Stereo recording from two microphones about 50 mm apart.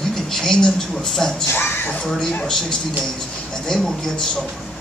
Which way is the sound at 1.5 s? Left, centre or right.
Left.